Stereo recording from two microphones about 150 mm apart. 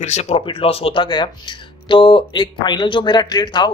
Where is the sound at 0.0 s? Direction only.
50° left (ahead or behind).